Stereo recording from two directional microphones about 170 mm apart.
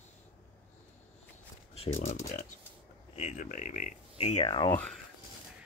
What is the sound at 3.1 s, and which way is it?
Speech, 45° left (ahead or behind).